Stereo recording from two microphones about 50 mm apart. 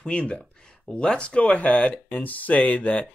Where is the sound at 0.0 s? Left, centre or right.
Left.